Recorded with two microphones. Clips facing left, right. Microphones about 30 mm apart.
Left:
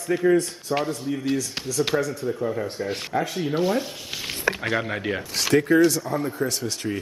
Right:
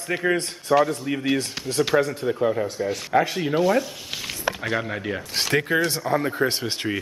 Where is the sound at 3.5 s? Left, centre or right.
Centre.